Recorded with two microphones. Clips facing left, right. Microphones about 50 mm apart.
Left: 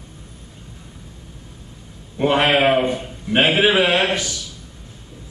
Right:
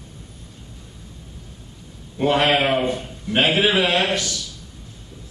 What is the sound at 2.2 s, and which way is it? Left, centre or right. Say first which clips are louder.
A man's voice: left 2 dB; centre.